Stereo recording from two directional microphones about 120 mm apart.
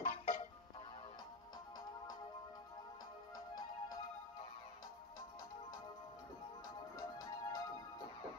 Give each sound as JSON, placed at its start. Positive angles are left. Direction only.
{"t": 0.0, "sound": "music", "side_deg": 75}
{"t": 7.0, "sound": "music", "side_deg": 30}